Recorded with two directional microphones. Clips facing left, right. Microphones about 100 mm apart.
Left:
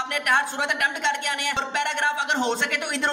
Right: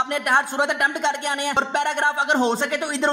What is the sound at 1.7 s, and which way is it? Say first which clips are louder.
A woman's voice: right 3 dB; 40° right (ahead or behind).